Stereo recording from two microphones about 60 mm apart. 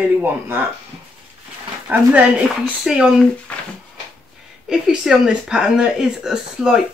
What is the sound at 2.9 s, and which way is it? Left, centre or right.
Speech, centre.